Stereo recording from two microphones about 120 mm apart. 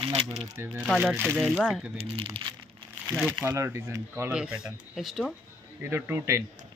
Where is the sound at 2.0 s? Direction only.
55° right (ahead or behind).